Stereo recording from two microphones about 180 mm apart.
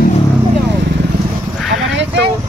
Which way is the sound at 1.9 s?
90° right.